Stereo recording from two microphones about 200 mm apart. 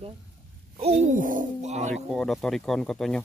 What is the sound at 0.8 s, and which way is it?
Speech, 35° right (ahead or behind).